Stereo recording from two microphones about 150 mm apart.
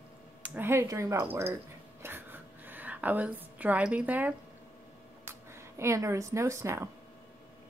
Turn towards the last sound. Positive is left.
turn(degrees=-20)  # may be behind; listen again after turning